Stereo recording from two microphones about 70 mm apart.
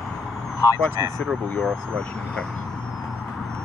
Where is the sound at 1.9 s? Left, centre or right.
Centre.